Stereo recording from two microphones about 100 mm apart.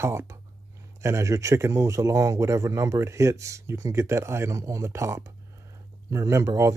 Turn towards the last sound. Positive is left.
turn(degrees=-30)  # may be behind; listen again after turning